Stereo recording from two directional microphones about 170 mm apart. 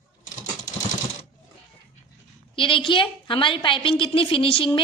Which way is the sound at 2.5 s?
30° left (ahead or behind).